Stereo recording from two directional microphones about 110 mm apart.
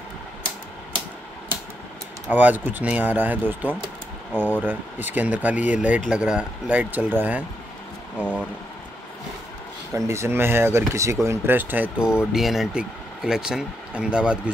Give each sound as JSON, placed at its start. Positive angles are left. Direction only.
{"t": 2.3, "sound": "speech", "side_deg": -15}
{"t": 8.2, "sound": "speech", "side_deg": 10}
{"t": 9.9, "sound": "speech", "side_deg": -25}